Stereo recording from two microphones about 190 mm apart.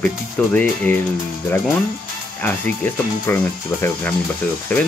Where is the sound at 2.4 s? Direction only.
10° left (ahead or behind).